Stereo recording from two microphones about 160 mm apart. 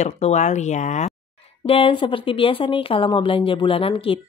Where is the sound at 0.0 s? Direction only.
45° left (ahead or behind).